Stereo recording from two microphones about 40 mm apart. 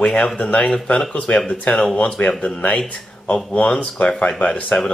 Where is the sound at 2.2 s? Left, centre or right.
Left.